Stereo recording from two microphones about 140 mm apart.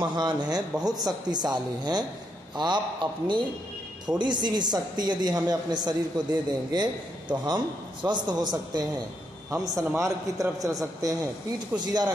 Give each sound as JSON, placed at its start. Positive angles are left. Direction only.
{"t": 0.0, "sound": "a woman's voice", "side_deg": -30}